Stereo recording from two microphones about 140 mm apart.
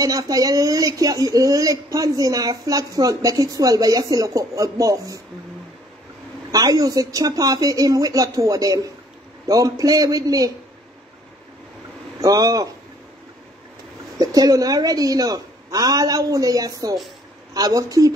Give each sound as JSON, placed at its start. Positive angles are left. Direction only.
{"t": 0.0, "sound": "speech", "side_deg": -25}
{"t": 6.5, "sound": "speech", "side_deg": -25}
{"t": 12.2, "sound": "speech", "side_deg": -25}
{"t": 14.1, "sound": "speech", "side_deg": -25}